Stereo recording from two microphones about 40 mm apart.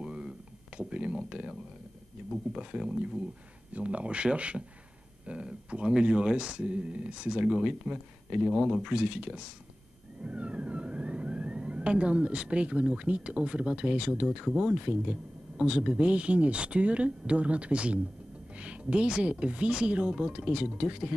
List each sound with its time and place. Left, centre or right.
0.0 s a sound: right
2.5 s speech: right
3.7 s speech: right
8.4 s speech: centre
8.8 s speech: right